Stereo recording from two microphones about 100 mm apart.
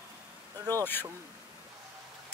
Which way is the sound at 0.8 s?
20° left (ahead or behind).